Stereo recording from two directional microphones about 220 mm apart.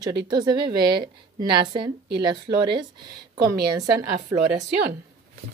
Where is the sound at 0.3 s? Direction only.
20° right (ahead or behind).